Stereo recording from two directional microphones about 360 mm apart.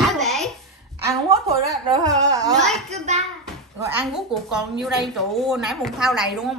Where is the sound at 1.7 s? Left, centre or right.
Centre.